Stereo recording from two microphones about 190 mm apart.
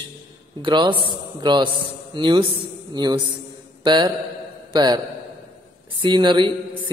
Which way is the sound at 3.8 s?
25° right (ahead or behind).